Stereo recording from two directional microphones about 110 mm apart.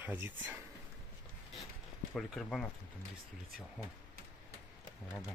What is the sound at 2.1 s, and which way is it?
Speech, 5° left (ahead or behind).